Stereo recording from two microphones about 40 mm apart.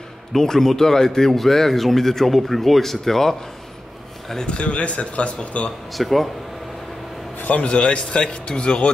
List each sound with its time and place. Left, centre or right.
0.3 s a man's voice: centre
4.5 s speech: left
5.9 s speech: centre
7.4 s a man's voice: left
7.7 s a man's voice: left